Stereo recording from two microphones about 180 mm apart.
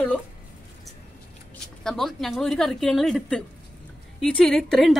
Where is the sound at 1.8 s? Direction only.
Centre (ahead or behind).